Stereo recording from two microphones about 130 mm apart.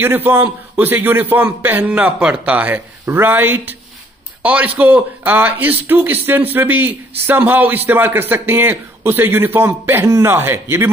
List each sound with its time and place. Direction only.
0.0 s a man's voice: 15° right (ahead or behind)